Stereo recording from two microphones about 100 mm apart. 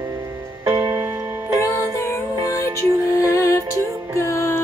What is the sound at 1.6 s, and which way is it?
Music, 25° left (ahead or behind).